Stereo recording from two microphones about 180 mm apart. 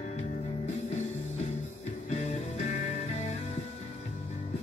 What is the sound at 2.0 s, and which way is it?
Music, 40° left (ahead or behind).